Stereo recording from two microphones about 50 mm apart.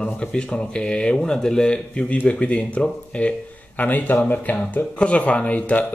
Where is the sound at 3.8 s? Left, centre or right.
Left.